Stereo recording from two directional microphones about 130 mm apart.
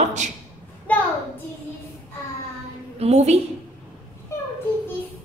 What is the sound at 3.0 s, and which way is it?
Speech, 55° right (ahead or behind).